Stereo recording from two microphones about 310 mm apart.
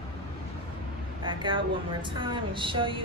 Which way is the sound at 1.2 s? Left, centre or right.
Centre.